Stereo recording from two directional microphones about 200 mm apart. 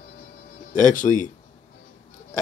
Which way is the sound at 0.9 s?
40° left (ahead or behind).